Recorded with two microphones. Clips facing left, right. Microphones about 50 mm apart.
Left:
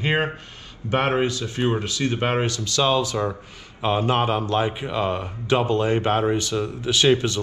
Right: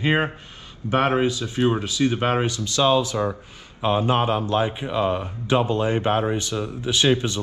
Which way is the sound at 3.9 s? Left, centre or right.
Left.